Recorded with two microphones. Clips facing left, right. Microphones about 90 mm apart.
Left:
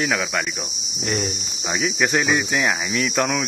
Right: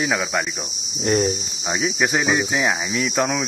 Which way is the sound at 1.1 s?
30° right (ahead or behind).